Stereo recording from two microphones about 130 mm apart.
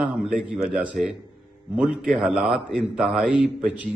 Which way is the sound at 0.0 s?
5° right (ahead or behind).